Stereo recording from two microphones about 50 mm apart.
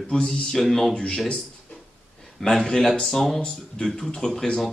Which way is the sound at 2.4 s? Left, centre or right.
Centre.